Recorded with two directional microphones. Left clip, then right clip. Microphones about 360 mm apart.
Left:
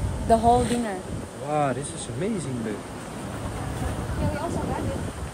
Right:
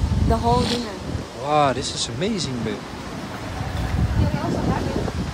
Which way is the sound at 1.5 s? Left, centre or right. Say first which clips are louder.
Right 6 dB; centre.